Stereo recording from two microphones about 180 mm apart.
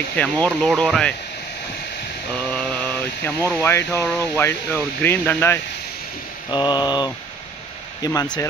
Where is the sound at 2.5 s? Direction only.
5° left (ahead or behind).